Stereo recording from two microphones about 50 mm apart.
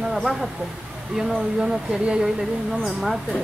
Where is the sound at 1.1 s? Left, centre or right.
Centre.